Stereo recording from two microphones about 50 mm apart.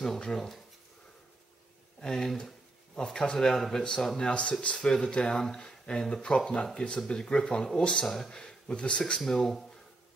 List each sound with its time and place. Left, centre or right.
0.2 s speech: centre
2.0 s speech: centre
9.2 s speech: centre